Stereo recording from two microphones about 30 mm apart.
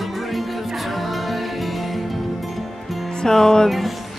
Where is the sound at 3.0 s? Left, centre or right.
Centre.